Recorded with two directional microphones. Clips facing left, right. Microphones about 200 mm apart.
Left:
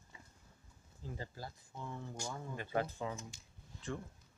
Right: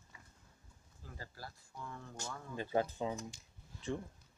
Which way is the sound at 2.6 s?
25° right (ahead or behind).